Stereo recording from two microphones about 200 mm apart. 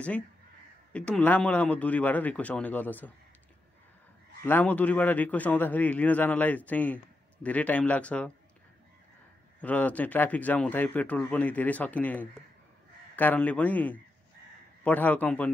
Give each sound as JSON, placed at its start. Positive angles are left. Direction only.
{"t": 0.9, "sound": "speech", "side_deg": 5}
{"t": 4.4, "sound": "speech", "side_deg": 10}
{"t": 9.6, "sound": "speech", "side_deg": 5}